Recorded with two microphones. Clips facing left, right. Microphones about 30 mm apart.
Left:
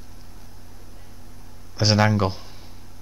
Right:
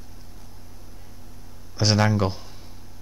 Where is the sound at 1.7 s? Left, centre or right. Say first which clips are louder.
Left 2 dB; centre.